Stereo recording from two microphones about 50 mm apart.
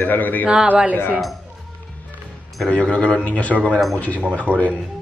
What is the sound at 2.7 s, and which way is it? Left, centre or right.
Speech, left.